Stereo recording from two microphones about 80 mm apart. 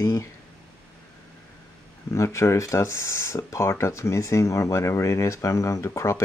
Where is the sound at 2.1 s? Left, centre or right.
Left.